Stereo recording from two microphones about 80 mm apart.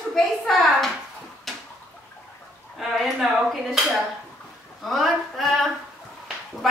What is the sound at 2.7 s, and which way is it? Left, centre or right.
Speech, centre.